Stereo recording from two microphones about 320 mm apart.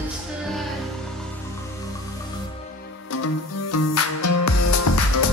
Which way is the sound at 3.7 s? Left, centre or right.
Left.